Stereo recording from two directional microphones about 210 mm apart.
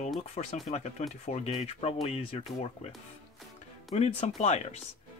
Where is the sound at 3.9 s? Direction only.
30° left (ahead or behind).